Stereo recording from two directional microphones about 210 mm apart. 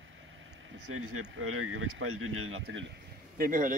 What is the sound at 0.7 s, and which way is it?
Speech, 85° right.